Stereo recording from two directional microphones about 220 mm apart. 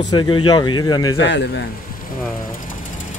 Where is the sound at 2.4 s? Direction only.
40° left (ahead or behind).